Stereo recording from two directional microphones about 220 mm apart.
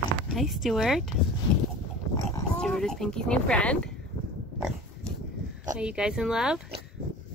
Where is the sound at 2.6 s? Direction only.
5° left (ahead or behind).